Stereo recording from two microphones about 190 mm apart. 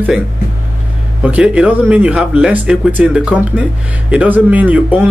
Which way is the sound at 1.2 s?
5° right (ahead or behind).